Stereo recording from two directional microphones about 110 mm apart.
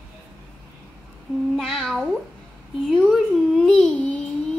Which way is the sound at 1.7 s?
Centre (ahead or behind).